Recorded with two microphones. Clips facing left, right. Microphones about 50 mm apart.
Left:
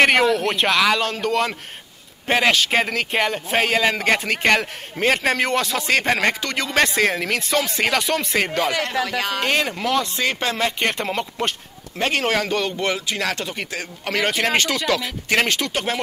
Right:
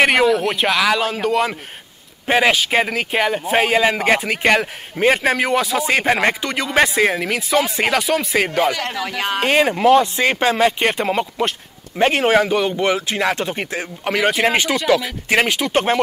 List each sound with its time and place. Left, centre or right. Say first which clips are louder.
0.0 s a man's voice: right 2 dB; centre
9.0 s a man's voice: right 2 dB; centre
14.1 s a man's voice: right 3 dB; centre
15.7 s speech: right 7 dB; right